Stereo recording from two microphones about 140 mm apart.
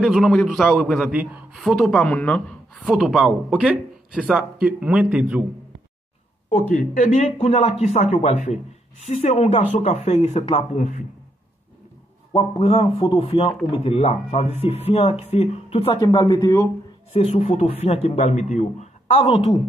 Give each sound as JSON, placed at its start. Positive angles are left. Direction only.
{"t": 0.0, "sound": "a man's voice", "side_deg": -5}
{"t": 6.7, "sound": "speech", "side_deg": 70}
{"t": 7.2, "sound": "a man's voice", "side_deg": 50}
{"t": 12.4, "sound": "a man's voice", "side_deg": 45}
{"t": 15.9, "sound": "speech", "side_deg": 30}
{"t": 17.1, "sound": "a man's voice", "side_deg": 50}